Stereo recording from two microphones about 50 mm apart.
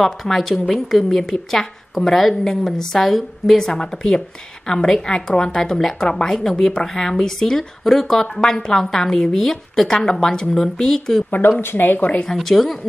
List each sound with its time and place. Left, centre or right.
0.0 s a woman's voice: centre
11.2 s speech: left
12.4 s a woman's voice: centre